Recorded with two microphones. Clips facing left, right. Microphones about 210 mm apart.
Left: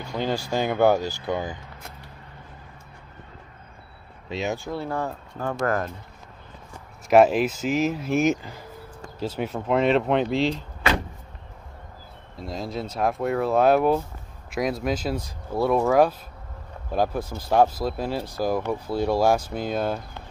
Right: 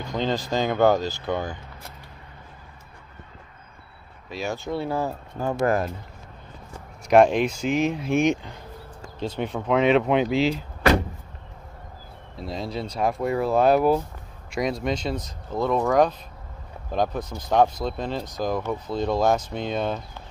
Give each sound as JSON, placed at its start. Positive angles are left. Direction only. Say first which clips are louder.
{"t": 0.1, "sound": "speech", "louder": "right 1 dB", "side_deg": 10}
{"t": 4.3, "sound": "speech", "louder": "left 2 dB", "side_deg": 20}
{"t": 4.6, "sound": "speech", "louder": "right 2 dB", "side_deg": 0}
{"t": 7.1, "sound": "speech", "louder": "even", "side_deg": 5}
{"t": 12.4, "sound": "speech", "louder": "even", "side_deg": 0}